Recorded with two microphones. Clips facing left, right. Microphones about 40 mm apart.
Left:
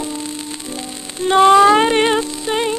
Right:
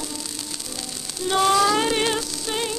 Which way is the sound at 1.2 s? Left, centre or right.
Left.